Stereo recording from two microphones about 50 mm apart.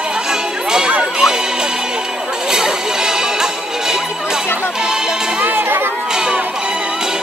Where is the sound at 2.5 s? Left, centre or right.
Centre.